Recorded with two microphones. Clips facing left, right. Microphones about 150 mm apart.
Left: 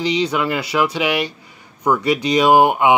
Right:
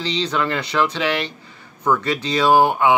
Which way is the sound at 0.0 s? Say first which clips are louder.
Left 3 dB; 10° left (ahead or behind).